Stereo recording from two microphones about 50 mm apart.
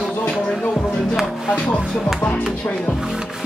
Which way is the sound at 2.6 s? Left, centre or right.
Left.